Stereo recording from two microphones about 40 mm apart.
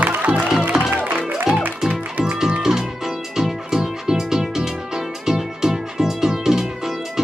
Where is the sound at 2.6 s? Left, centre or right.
Centre.